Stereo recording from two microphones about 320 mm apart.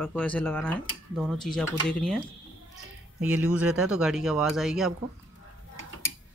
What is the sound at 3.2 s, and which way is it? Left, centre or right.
Speech, centre.